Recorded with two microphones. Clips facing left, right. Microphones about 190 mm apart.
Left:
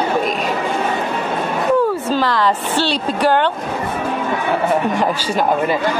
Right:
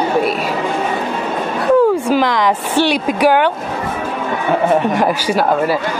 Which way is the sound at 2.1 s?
15° right (ahead or behind).